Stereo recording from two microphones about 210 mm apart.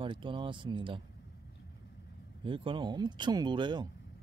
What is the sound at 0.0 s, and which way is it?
Speech, 25° right (ahead or behind).